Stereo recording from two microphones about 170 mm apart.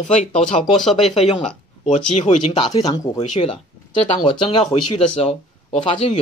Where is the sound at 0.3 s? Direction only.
5° left (ahead or behind).